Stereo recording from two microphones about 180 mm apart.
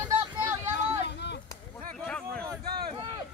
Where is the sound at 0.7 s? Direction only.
70° left (ahead or behind).